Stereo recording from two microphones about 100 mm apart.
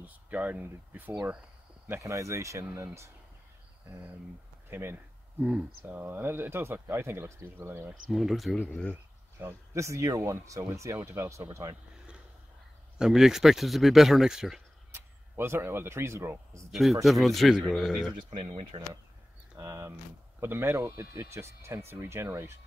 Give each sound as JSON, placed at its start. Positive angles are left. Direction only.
{"t": 0.0, "sound": "speech", "side_deg": -15}
{"t": 2.0, "sound": "speech", "side_deg": -35}
{"t": 3.9, "sound": "speech", "side_deg": -15}
{"t": 8.1, "sound": "speech", "side_deg": 0}
{"t": 9.4, "sound": "speech", "side_deg": -25}
{"t": 12.9, "sound": "speech", "side_deg": -5}
{"t": 14.9, "sound": "speech", "side_deg": -25}
{"t": 16.7, "sound": "speech", "side_deg": 0}
{"t": 18.3, "sound": "speech", "side_deg": -75}
{"t": 19.5, "sound": "speech", "side_deg": -35}
{"t": 20.3, "sound": "speech", "side_deg": -25}